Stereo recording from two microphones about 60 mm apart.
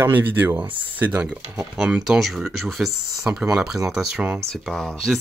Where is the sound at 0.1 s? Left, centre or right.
Right.